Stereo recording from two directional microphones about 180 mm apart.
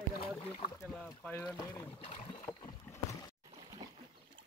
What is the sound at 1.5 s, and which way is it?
Speech, 20° left (ahead or behind).